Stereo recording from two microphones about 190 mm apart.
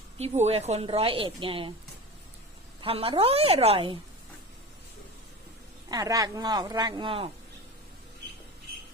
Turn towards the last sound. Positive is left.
turn(degrees=-30)  # may be behind; listen again after turning